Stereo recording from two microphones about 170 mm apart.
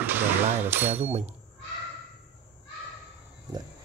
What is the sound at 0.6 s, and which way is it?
Speech, 10° right (ahead or behind).